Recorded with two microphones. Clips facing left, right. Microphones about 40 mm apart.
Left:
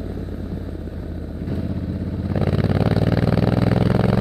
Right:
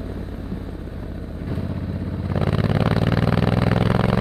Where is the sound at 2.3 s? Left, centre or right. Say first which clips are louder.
Left 1 dB; centre.